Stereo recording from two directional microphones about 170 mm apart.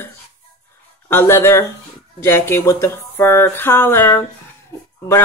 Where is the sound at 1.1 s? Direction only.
15° left (ahead or behind).